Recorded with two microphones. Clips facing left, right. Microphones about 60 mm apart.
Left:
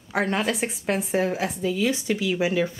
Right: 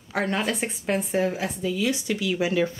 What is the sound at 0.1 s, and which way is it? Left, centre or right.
Speech, centre.